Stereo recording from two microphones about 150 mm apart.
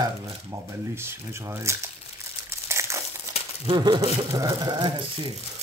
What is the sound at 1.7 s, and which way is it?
Speech, 20° right (ahead or behind).